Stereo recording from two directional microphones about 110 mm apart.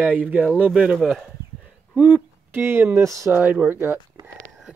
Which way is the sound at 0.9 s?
Centre (ahead or behind).